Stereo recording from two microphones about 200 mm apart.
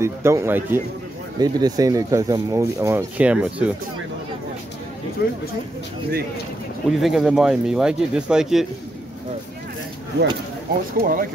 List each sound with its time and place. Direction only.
0.0 s speech: 15° right (ahead or behind)
5.2 s speech: 50° left (ahead or behind)
6.9 s speech: centre (ahead or behind)
11.0 s speech: 45° right (ahead or behind)